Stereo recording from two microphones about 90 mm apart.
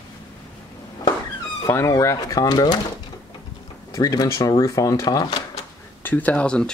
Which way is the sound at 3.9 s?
40° left (ahead or behind).